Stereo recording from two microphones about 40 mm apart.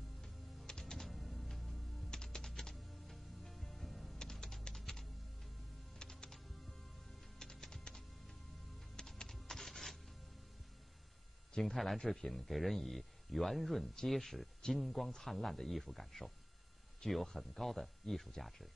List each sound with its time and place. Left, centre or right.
0.7 s music: centre
1.0 s music: centre
2.0 s typing: centre
4.2 s typing: centre
7.3 s music: centre
9.3 s a sound: centre
11.7 s speech: centre